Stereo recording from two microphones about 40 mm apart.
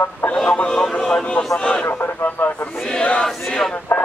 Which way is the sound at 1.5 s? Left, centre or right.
Left.